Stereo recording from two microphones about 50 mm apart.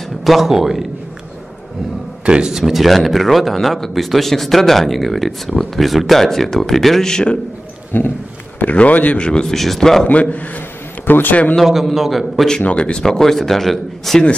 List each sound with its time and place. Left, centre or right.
0.2 s speech: centre
2.2 s speech: centre
7.9 s a man's voice: left
9.2 s speech: centre
9.5 s speech: centre
10.3 s a man's voice: left
11.6 s speech: centre
12.6 s speech: left
13.0 s speech: centre